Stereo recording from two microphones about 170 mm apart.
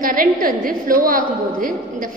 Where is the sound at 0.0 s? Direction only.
55° right (ahead or behind).